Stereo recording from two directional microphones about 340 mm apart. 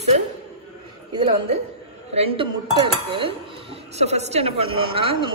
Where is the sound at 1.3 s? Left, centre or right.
Centre.